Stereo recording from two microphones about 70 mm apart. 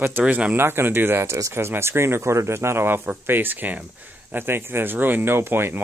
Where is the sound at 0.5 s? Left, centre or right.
Right.